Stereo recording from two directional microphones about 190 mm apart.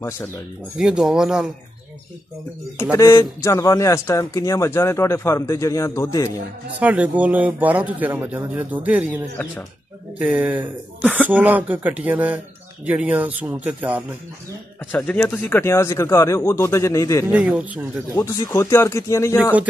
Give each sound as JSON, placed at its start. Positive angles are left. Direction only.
{"t": 0.7, "sound": "speech", "side_deg": -5}
{"t": 2.8, "sound": "a man's voice", "side_deg": 15}
{"t": 6.8, "sound": "speech", "side_deg": -10}
{"t": 14.9, "sound": "a man's voice", "side_deg": 10}
{"t": 17.3, "sound": "speech", "side_deg": -5}
{"t": 18.1, "sound": "a man's voice", "side_deg": 15}